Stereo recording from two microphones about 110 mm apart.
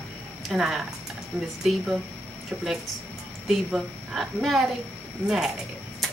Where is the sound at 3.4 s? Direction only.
Centre (ahead or behind).